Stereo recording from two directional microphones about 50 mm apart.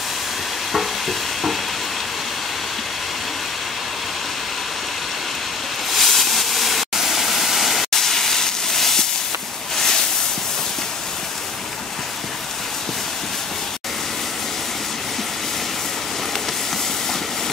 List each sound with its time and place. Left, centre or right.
0.7 s stir: centre
5.9 s waterfall: centre
9.8 s a sound: centre